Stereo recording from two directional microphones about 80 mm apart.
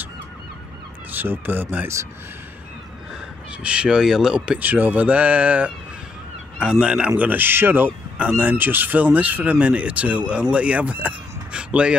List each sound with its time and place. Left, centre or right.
1.1 s speech: right
3.6 s speech: centre
4.6 s speech: right